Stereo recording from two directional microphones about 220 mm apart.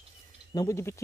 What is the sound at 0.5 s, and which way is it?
Speech, 15° left (ahead or behind).